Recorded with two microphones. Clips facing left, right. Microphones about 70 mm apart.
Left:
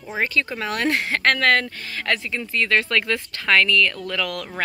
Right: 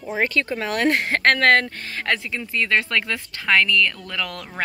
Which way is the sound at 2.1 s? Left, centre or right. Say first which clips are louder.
Left 1 dB; centre.